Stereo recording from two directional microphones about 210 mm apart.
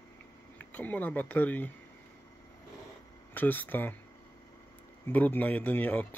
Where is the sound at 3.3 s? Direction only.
10° left (ahead or behind).